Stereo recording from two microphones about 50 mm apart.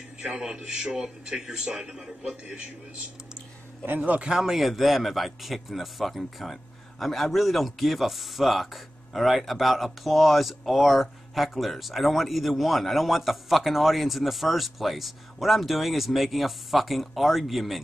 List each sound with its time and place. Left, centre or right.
0.2 s a man's voice: centre
3.8 s a man's voice: right
4.5 s a man's voice: centre